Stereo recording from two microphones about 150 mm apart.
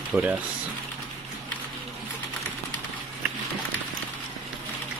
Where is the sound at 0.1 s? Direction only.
10° right (ahead or behind).